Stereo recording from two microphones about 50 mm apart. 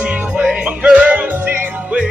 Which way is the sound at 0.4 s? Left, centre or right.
Centre.